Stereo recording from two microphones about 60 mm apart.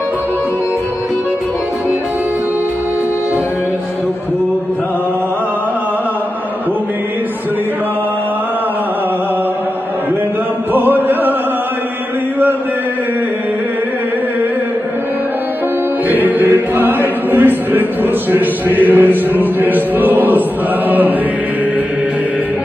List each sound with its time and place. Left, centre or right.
10.7 s music: right
16.1 s choir: right
18.8 s chant: right